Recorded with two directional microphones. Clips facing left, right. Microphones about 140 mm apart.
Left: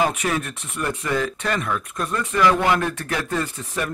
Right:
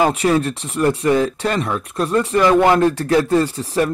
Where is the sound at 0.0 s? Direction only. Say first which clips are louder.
Right 7 dB; 30° right (ahead or behind).